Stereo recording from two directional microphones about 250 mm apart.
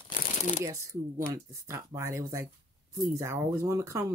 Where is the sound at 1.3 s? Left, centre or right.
Centre.